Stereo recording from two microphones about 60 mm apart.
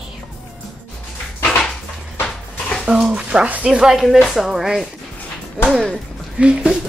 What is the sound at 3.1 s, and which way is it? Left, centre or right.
Speech, centre.